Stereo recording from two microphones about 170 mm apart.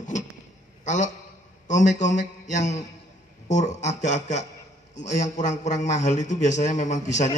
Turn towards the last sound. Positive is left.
turn(degrees=45)  # may be behind; listen again after turning